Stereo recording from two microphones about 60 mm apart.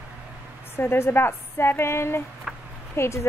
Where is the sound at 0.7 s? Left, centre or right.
Left.